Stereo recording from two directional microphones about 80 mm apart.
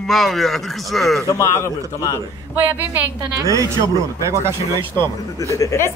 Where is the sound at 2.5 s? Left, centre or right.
Right.